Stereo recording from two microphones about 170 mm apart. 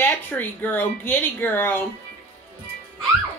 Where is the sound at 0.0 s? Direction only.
10° left (ahead or behind).